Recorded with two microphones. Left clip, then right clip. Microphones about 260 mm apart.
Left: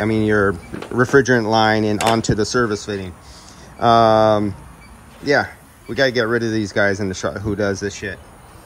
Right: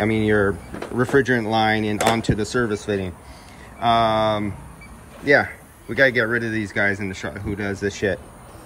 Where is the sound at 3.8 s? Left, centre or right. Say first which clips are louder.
Left 6 dB; centre.